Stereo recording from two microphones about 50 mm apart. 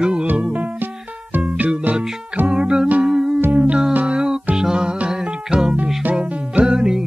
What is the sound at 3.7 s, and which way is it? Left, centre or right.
Music, right.